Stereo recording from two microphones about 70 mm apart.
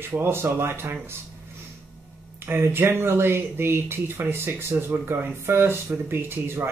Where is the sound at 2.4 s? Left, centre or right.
Right.